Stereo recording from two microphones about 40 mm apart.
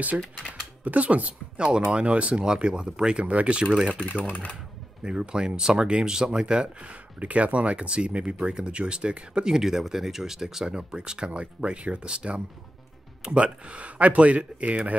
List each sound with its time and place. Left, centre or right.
0.5 s a sound: right
1.9 s speech: right
2.4 s speech: right
4.2 s speech: left
5.0 s speech: right
6.8 s speech: right
9.5 s speech: centre
10.8 s speech: right